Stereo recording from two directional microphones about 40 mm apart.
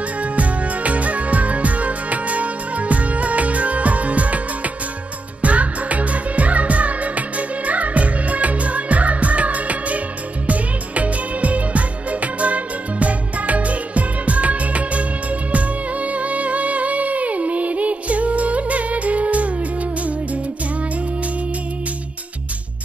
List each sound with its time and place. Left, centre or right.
0.2 s music: right
5.4 s music: right